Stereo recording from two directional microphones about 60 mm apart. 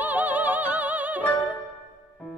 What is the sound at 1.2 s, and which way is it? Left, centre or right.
Music, left.